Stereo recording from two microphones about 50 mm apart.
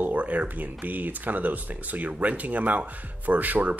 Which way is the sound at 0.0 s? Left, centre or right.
Right.